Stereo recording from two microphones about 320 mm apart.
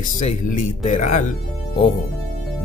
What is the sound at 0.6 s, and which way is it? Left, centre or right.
Speech, left.